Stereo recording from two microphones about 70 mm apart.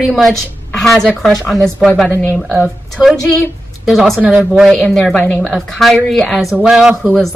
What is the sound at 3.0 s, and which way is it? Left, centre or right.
A man's voice, centre.